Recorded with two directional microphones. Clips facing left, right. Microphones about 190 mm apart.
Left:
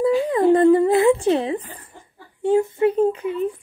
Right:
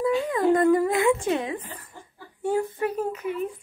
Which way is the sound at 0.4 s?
30° left (ahead or behind).